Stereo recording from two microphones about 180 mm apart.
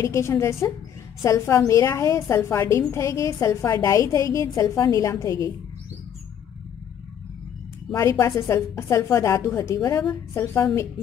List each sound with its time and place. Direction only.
0.0 s a woman's voice: 15° left (ahead or behind)
7.9 s a woman's voice: 15° left (ahead or behind)